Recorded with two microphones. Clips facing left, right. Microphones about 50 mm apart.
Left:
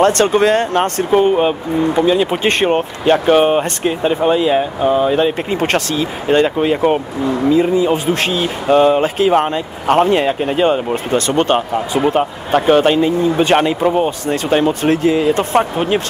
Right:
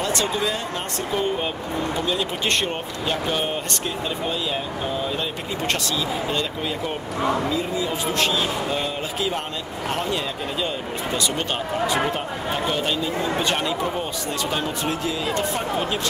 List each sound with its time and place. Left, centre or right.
0.0 s speech: left
2.0 s speech: left
7.4 s speech: left
13.6 s speech: left